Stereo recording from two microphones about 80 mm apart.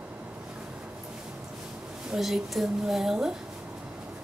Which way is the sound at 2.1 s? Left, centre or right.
Centre.